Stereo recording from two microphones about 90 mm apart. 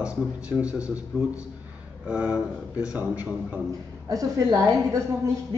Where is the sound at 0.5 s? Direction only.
15° right (ahead or behind).